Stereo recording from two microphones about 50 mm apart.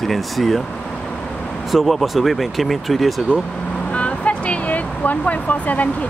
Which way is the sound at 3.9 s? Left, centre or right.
Left.